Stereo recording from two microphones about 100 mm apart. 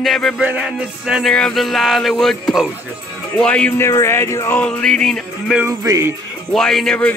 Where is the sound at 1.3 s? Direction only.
5° left (ahead or behind).